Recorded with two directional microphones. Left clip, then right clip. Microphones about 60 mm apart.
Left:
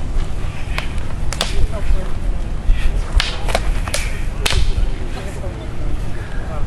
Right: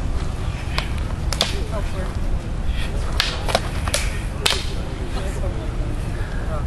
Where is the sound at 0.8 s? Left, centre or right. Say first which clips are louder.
Left 1 dB; centre.